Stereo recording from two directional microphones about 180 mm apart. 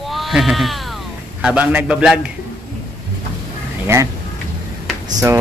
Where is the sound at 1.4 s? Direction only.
5° right (ahead or behind).